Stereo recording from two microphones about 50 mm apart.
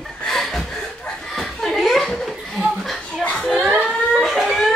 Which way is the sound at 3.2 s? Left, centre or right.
Left.